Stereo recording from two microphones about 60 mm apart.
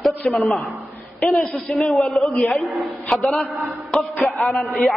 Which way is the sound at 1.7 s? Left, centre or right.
Centre.